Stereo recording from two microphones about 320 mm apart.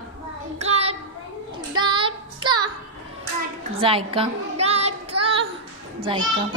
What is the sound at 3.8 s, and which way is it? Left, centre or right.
Child singing, centre.